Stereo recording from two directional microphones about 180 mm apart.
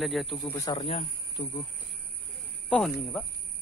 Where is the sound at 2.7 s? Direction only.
5° left (ahead or behind).